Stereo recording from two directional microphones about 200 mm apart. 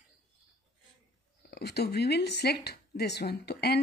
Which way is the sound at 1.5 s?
55° left (ahead or behind).